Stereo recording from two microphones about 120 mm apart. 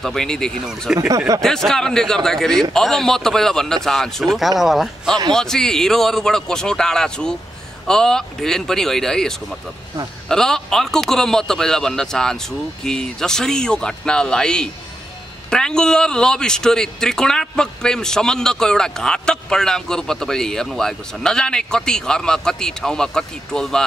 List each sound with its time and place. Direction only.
0.0 s speech: 5° left (ahead or behind)
0.9 s speech: 30° right (ahead or behind)
1.4 s speech: 5° left (ahead or behind)